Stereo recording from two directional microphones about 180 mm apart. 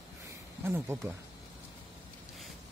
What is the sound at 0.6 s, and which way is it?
Speech, 15° right (ahead or behind).